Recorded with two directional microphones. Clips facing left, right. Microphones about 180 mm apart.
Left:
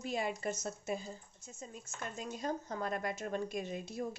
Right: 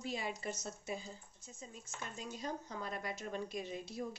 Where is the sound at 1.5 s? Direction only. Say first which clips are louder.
Left 3 dB; 50° left (ahead or behind).